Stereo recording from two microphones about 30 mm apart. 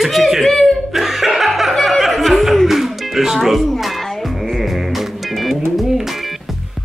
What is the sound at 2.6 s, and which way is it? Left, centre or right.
Music, centre.